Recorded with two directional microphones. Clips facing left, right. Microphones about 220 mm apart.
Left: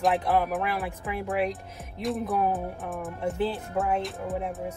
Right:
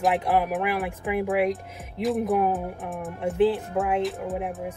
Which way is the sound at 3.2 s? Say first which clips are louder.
Right 7 dB; 15° right (ahead or behind).